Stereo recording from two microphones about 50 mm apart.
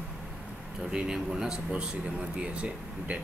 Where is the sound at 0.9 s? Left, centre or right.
Centre.